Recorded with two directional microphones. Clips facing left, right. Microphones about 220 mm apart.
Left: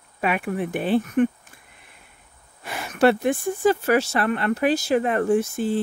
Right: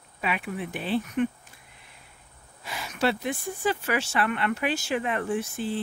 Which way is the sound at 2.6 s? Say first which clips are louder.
Left 8 dB; 55° left (ahead or behind).